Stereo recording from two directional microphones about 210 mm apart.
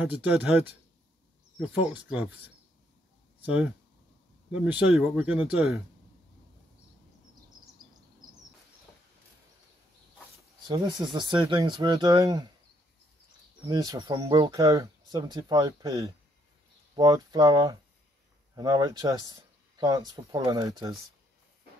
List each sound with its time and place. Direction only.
0.0 s speech: 5° right (ahead or behind)
1.9 s speech: 5° right (ahead or behind)
3.4 s speech: 5° right (ahead or behind)
10.7 s speech: 20° right (ahead or behind)
13.7 s speech: 20° right (ahead or behind)